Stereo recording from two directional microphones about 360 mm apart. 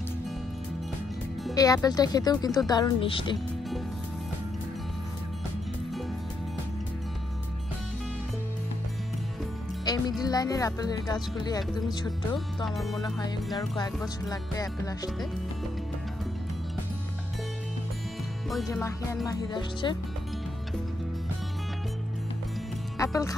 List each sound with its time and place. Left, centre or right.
1.4 s speech: centre
9.9 s music: centre
10.2 s speech: centre
12.6 s music: centre
14.0 s speech: centre
18.5 s speech: centre
22.9 s speech: centre